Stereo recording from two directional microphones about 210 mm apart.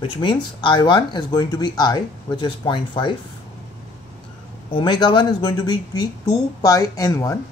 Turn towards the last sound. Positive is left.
turn(degrees=15)  # may be behind; listen again after turning